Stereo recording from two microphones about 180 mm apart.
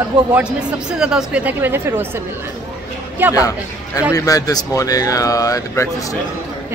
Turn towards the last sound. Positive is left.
turn(degrees=20)  # may be behind; listen again after turning